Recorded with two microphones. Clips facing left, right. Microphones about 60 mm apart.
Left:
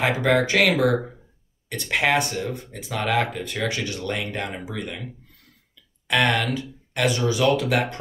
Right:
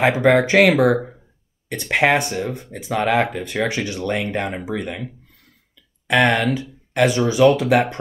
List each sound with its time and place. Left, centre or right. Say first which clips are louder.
0.0 s speech: right 5 dB; right
6.0 s speech: right 5 dB; right